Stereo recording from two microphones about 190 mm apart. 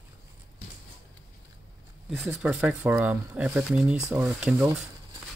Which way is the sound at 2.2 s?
10° right (ahead or behind).